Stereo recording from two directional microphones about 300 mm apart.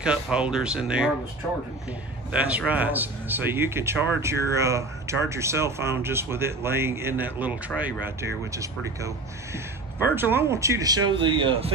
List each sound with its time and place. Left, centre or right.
0.0 s speech: centre
2.3 s speech: centre